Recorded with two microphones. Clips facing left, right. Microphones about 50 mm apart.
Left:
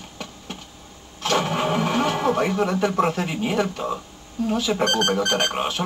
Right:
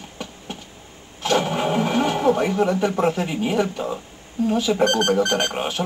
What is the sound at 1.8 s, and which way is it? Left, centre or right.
Television, right.